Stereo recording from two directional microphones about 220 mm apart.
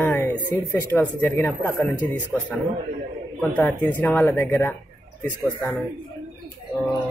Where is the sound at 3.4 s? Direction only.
10° left (ahead or behind).